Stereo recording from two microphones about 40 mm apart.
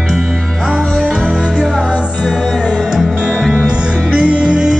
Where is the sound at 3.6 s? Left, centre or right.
Right.